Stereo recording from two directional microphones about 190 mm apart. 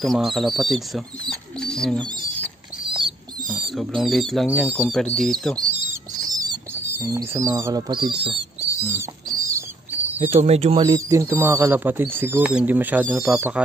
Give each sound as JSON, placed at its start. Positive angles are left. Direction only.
{"t": 0.0, "sound": "speech", "side_deg": 0}
{"t": 6.2, "sound": "a sound", "side_deg": -20}
{"t": 8.8, "sound": "bird", "side_deg": -15}
{"t": 10.3, "sound": "speech", "side_deg": -35}
{"t": 10.9, "sound": "speech", "side_deg": -15}